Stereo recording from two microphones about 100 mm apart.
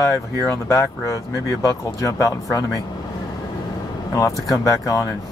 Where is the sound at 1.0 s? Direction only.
30° left (ahead or behind).